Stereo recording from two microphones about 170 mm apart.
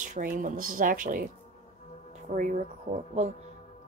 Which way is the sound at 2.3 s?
45° right (ahead or behind).